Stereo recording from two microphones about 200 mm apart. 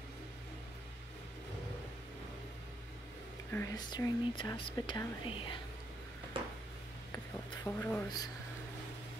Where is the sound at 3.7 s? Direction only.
20° left (ahead or behind).